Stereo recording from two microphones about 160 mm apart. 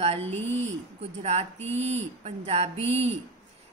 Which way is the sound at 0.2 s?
10° left (ahead or behind).